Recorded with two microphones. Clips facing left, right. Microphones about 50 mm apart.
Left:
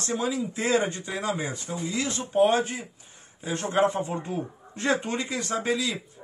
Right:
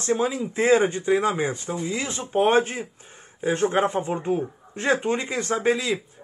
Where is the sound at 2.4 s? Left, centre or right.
Right.